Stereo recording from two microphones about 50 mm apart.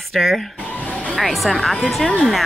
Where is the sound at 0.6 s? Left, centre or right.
Left.